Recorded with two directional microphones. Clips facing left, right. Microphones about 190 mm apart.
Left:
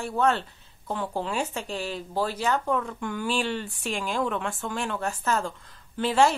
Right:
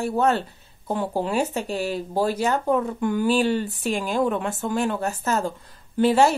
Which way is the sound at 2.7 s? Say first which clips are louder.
Right 5 dB; 20° right (ahead or behind).